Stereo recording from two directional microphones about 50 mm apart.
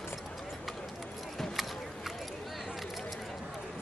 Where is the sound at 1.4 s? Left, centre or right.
Centre.